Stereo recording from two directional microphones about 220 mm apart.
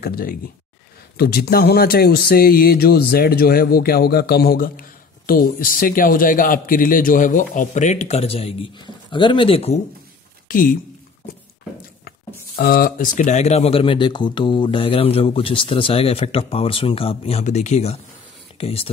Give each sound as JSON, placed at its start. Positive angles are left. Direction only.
{"t": 0.0, "sound": "speech", "side_deg": 45}
{"t": 10.5, "sound": "speech", "side_deg": 40}
{"t": 12.5, "sound": "speech", "side_deg": 40}